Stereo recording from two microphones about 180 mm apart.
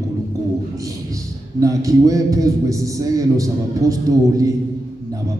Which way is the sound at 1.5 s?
20° right (ahead or behind).